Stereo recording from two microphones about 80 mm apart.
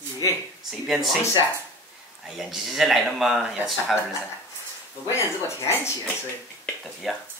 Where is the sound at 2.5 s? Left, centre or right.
Centre.